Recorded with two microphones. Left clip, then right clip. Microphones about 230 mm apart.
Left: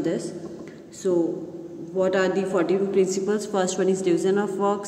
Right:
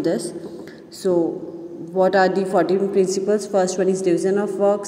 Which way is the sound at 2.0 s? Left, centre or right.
Centre.